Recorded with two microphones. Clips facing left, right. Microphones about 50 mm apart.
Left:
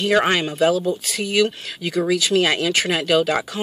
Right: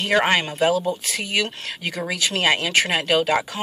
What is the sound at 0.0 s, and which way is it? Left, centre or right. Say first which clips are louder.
Speech: left 1 dB; right.